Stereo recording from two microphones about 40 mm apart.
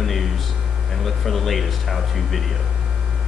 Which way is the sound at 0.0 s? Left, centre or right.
Centre.